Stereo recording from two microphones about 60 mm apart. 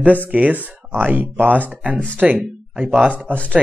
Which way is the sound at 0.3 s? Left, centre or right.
Right.